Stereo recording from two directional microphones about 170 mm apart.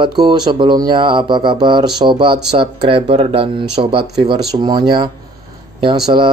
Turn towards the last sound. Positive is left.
turn(degrees=-30)  # may be behind; listen again after turning